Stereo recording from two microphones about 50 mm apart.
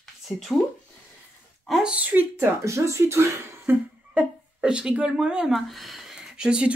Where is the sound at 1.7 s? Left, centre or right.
Centre.